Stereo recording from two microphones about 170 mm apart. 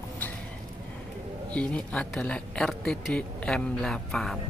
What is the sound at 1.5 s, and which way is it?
Speech, 5° left (ahead or behind).